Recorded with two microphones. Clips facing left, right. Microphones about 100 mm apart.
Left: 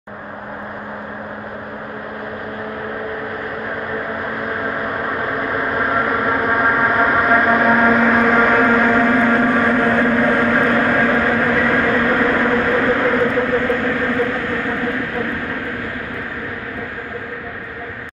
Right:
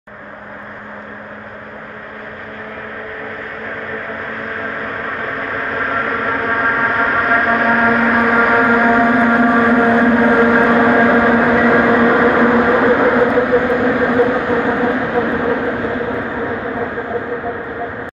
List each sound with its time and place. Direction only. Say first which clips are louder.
4.1 s vehicle: left 2 dB; 5° left (ahead or behind); by 16.5 s 20° right (ahead or behind)